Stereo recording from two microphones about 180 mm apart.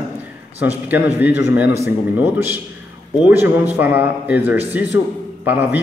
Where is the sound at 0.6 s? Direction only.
10° right (ahead or behind).